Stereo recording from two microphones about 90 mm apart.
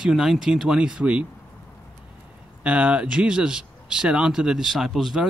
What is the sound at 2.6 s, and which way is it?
Speech, 15° right (ahead or behind).